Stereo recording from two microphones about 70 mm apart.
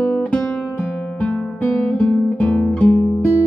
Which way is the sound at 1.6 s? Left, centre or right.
Left.